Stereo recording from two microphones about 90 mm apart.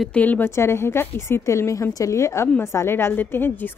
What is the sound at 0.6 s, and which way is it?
A woman's voice, 30° left (ahead or behind).